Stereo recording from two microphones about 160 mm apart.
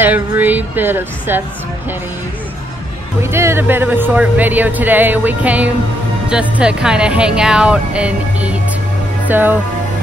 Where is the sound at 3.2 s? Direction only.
15° right (ahead or behind).